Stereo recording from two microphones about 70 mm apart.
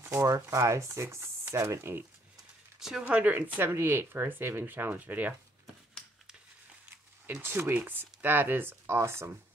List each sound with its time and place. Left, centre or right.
0.0 s speech: right
2.8 s speech: centre
3.1 s speech: right
6.9 s speech: right